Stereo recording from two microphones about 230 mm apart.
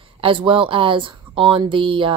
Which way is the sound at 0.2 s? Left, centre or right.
Right.